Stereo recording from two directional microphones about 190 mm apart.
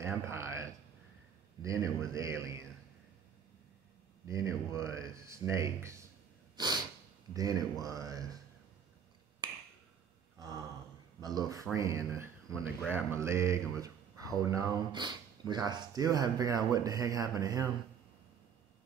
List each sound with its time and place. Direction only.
0.0 s a sound: 15° right (ahead or behind)
1.6 s speech: 15° right (ahead or behind)
4.3 s speech: 15° right (ahead or behind)
6.5 s breathing: 20° right (ahead or behind)
7.3 s speech: 20° right (ahead or behind)
11.1 s speech: 20° right (ahead or behind)